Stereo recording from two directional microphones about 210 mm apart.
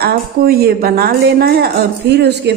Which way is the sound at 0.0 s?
45° right (ahead or behind).